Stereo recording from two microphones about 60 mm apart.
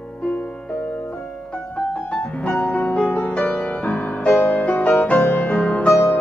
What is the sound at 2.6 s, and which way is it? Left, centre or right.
Music, left.